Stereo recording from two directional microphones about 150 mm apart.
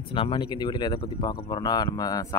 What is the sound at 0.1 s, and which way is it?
Speech, 35° left (ahead or behind).